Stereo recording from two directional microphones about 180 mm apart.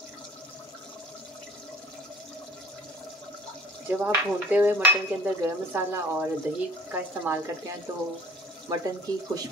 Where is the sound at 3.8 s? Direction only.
10° right (ahead or behind).